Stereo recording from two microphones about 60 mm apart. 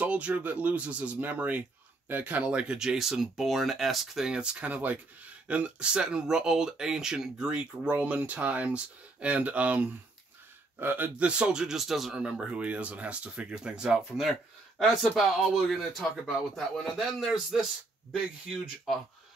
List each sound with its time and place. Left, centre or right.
0.0 s speech: right
2.8 s speech: centre
7.9 s speech: right
10.8 s speech: right
11.1 s speech: centre
12.2 s speech: centre